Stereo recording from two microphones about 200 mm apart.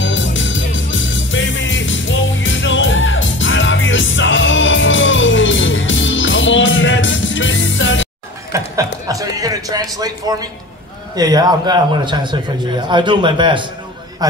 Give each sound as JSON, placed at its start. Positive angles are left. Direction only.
{"t": 0.0, "sound": "music", "side_deg": 70}
{"t": 8.5, "sound": "a man's voice", "side_deg": -15}